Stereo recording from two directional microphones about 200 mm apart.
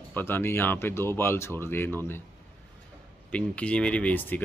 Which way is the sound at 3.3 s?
5° left (ahead or behind).